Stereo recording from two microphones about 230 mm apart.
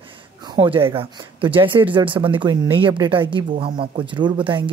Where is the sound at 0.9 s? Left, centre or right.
Right.